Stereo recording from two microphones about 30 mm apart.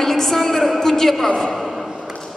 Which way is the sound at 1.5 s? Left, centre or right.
Centre.